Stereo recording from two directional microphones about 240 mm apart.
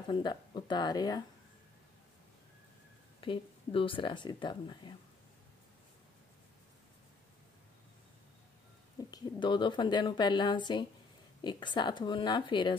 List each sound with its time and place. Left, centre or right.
0.1 s speech: centre
3.2 s speech: left
9.1 s speech: centre